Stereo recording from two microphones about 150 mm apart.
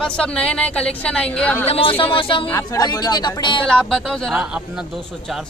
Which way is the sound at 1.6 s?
40° left (ahead or behind).